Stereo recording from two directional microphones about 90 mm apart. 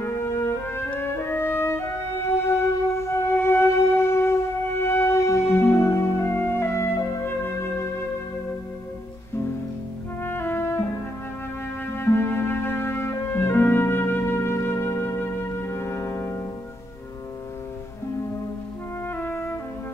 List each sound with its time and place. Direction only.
0.0 s music: 30° left (ahead or behind)
10.2 s music: 25° left (ahead or behind)
19.0 s brass instrument: 20° left (ahead or behind)